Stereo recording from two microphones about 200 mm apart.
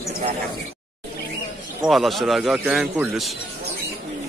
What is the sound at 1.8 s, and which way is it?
A man's voice, centre (ahead or behind).